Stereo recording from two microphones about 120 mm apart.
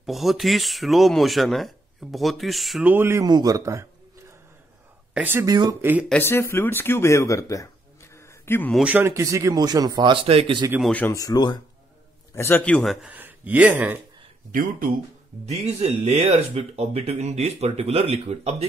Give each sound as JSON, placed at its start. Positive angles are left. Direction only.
{"t": 0.0, "sound": "speech", "side_deg": 0}
{"t": 2.8, "sound": "a man's voice", "side_deg": -15}
{"t": 3.3, "sound": "a man's voice", "side_deg": -35}
{"t": 5.1, "sound": "speech", "side_deg": -15}
{"t": 5.4, "sound": "a man's voice", "side_deg": -30}
{"t": 5.8, "sound": "speech", "side_deg": -15}
{"t": 6.5, "sound": "a man's voice", "side_deg": 20}
{"t": 8.8, "sound": "a man's voice", "side_deg": -20}
{"t": 10.9, "sound": "a man's voice", "side_deg": 15}
{"t": 11.1, "sound": "speech", "side_deg": 35}
{"t": 12.4, "sound": "a man's voice", "side_deg": 15}
{"t": 12.8, "sound": "speech", "side_deg": 0}
{"t": 13.1, "sound": "speech", "side_deg": -15}
{"t": 15.4, "sound": "speech", "side_deg": -65}